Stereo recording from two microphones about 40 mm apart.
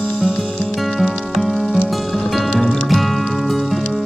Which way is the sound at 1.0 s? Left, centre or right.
Centre.